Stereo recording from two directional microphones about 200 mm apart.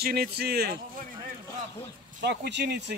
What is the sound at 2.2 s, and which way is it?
Speech, 60° right (ahead or behind).